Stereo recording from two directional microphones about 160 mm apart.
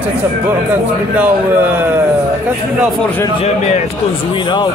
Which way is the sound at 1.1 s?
10° right (ahead or behind).